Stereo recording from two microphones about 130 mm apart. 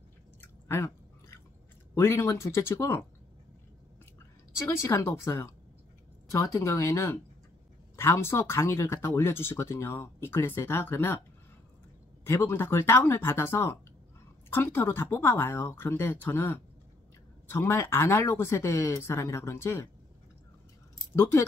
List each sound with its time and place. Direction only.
0.4 s chewing: 20° left (ahead or behind)
2.0 s speech: 20° left (ahead or behind)
4.6 s speech: 20° left (ahead or behind)
12.3 s speech: 20° left (ahead or behind)
21.2 s speech: 20° left (ahead or behind)